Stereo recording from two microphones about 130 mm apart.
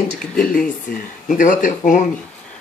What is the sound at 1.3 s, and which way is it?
Speech, 85° left.